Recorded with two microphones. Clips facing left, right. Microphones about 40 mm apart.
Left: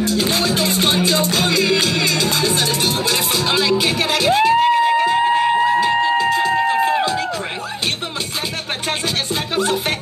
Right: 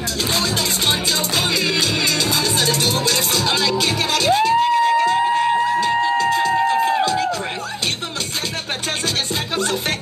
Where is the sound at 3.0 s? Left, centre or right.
Centre.